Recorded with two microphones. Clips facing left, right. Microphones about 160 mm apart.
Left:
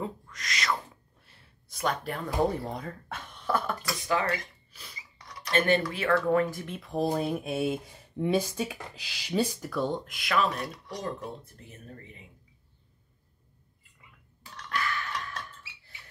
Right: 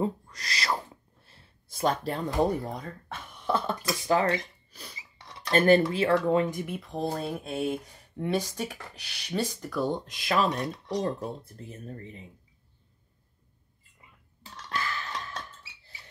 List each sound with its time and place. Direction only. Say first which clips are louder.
0.0 s speech: right 6 dB; 35° right (ahead or behind)
1.2 s a sound: right 2 dB; 30° right (ahead or behind)
2.7 s speech: left 1 dB; centre (ahead or behind)
3.3 s speech: right 1 dB; 20° right (ahead or behind); by 4.9 s 40° right (ahead or behind)
5.2 s cutlery: right 4 dB; 25° right (ahead or behind)
5.8 s speech: right 3 dB; 25° right (ahead or behind)
6.8 s speech: left 8 dB; centre (ahead or behind)
7.1 s speech: left 2 dB; 15° left (ahead or behind)
9.8 s speech: right 1 dB; 15° right (ahead or behind)
10.1 s speech: right 2 dB; 30° right (ahead or behind)
14.4 s a sound: left 1 dB; 30° right (ahead or behind)